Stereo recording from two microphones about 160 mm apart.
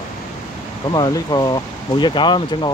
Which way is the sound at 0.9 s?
25° left (ahead or behind).